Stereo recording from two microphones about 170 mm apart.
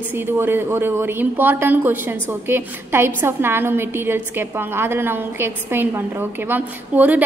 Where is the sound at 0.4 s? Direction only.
15° right (ahead or behind).